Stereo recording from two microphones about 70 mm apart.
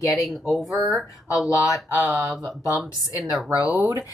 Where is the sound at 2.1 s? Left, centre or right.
Centre.